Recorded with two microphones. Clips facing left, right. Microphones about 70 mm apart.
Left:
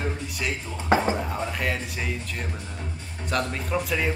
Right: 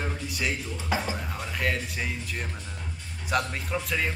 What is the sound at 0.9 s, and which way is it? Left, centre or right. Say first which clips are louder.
Speech: left 8 dB; left.